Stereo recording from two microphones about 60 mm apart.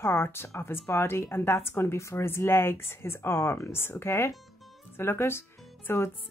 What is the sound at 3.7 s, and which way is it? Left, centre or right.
A woman's voice, left.